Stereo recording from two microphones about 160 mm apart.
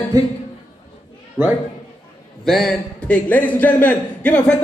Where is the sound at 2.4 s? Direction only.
Centre (ahead or behind).